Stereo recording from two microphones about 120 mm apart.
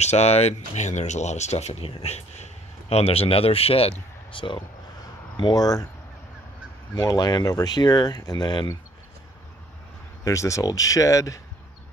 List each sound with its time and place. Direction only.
0.0 s speech: 65° left (ahead or behind); by 4.6 s 45° left (ahead or behind)
5.4 s speech: 30° left (ahead or behind)
7.0 s speech: 35° left (ahead or behind)
10.2 s speech: 25° left (ahead or behind)